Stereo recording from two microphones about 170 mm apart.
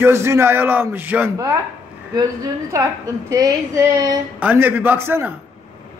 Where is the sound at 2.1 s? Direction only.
20° right (ahead or behind).